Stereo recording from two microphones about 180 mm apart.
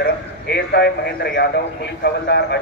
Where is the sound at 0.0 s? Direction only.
65° left (ahead or behind).